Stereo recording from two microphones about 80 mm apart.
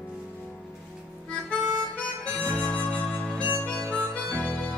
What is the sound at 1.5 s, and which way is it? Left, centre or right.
Harmonica, centre.